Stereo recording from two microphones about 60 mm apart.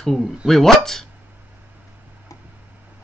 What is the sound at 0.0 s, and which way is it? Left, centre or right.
Speech, centre.